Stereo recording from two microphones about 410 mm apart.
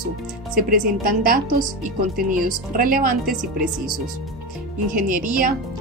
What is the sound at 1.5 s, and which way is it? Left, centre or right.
Speech, right.